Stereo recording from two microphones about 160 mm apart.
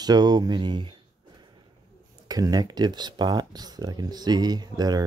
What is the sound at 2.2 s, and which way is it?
Speech, 25° right (ahead or behind).